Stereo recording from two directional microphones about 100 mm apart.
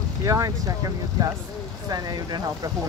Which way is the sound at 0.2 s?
35° right (ahead or behind).